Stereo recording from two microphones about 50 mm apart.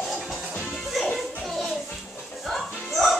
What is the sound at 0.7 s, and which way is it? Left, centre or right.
Music, centre.